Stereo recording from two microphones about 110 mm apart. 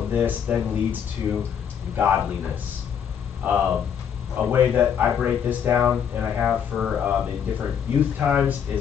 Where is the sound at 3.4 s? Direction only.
15° right (ahead or behind).